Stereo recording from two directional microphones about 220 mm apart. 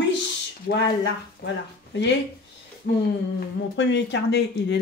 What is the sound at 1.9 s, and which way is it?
Speech, 50° left (ahead or behind).